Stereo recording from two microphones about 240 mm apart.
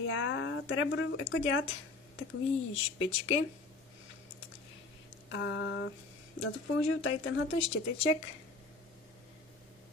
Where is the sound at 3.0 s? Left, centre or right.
Left.